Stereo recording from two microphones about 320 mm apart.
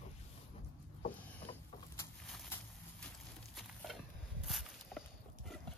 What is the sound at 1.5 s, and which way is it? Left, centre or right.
Vehicle, centre.